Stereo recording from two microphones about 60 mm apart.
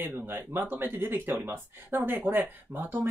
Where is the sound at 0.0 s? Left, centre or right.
Right.